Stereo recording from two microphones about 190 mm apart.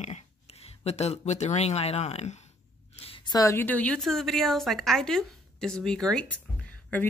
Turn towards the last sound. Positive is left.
turn(degrees=5)  # may be behind; listen again after turning